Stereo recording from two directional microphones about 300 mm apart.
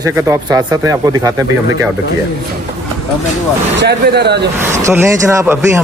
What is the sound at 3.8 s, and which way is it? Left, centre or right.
Speech, right.